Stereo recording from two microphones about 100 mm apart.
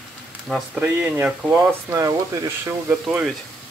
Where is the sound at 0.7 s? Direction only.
15° right (ahead or behind).